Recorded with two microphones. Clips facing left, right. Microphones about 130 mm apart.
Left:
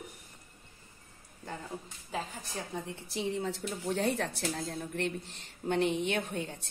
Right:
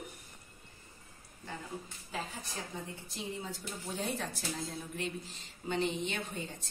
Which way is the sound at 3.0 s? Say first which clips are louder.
Left 11 dB; 75° left (ahead or behind).